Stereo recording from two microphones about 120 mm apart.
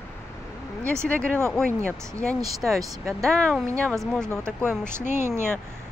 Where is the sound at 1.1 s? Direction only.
10° left (ahead or behind).